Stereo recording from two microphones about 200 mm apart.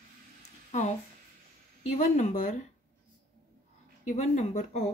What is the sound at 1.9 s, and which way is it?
Speech, 35° left (ahead or behind).